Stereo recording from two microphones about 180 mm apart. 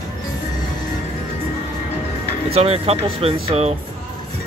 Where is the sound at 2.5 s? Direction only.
35° right (ahead or behind).